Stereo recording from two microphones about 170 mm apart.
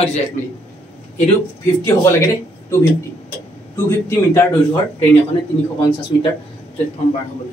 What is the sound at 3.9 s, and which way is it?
Speech, 15° left (ahead or behind).